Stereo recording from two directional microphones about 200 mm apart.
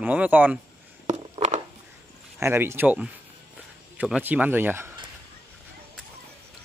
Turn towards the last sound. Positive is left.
turn(degrees=-10)  # may be behind; listen again after turning